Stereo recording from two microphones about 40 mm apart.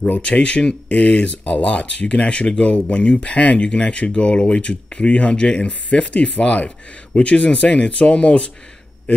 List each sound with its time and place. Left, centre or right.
0.2 s speech: left